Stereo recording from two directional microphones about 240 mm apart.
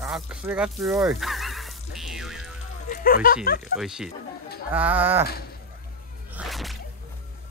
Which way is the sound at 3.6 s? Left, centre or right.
Centre.